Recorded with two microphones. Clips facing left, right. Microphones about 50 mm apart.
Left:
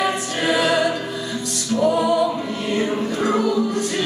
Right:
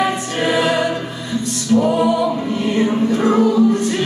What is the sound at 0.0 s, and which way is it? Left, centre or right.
Music, right.